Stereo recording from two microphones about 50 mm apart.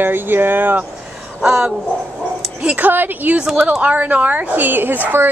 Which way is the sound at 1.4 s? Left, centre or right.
Centre.